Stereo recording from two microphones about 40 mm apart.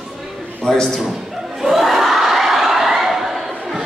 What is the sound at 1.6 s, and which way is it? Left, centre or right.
Crowd, centre.